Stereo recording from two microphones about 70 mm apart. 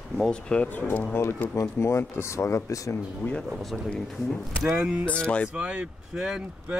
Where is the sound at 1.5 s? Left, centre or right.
Left.